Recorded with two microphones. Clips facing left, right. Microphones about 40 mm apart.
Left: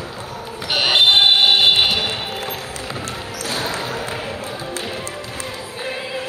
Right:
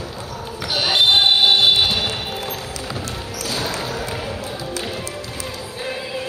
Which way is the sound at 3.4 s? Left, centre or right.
Left.